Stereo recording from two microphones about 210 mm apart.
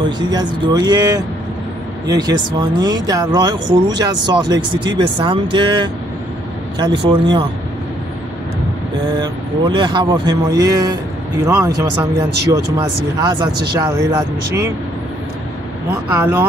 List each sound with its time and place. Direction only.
0.0 s speech: 20° right (ahead or behind)
9.2 s speech: 20° right (ahead or behind)
13.2 s speech: 20° right (ahead or behind)
15.9 s speech: 15° right (ahead or behind)